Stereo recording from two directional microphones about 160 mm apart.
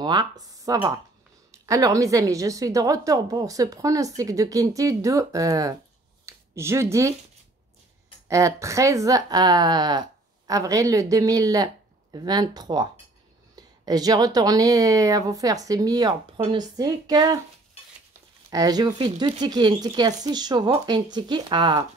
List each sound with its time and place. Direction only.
0.0 s a woman's voice: 25° right (ahead or behind)
8.3 s a woman's voice: 20° right (ahead or behind)
18.5 s a woman's voice: 25° right (ahead or behind)